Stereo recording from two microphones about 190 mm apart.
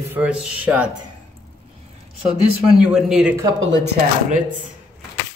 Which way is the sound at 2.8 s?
5° right (ahead or behind).